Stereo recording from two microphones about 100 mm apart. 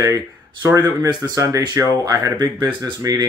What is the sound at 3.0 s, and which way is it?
Speech, 40° right (ahead or behind).